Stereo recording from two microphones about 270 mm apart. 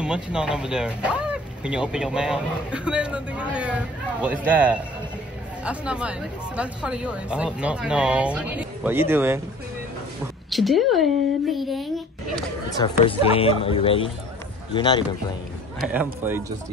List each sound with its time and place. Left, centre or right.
0.0 s speech: centre
10.5 s speech: centre
12.7 s a man's voice: centre
15.8 s a man's voice: centre